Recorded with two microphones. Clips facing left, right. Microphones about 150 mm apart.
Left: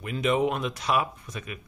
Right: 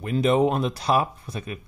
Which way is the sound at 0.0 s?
35° right (ahead or behind).